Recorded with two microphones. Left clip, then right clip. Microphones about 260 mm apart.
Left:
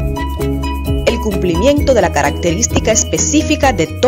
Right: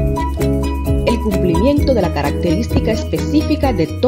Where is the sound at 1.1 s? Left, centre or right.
Left.